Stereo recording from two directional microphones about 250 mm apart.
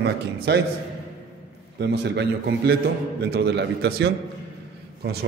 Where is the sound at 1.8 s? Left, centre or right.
Right.